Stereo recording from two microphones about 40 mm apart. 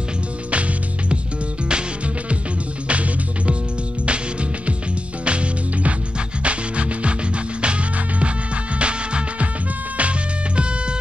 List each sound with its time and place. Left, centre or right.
1.7 s music: right